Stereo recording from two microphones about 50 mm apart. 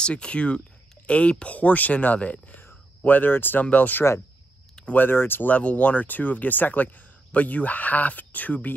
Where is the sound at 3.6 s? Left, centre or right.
Left.